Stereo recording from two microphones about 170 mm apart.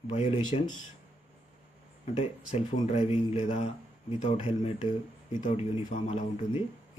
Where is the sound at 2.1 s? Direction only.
40° left (ahead or behind).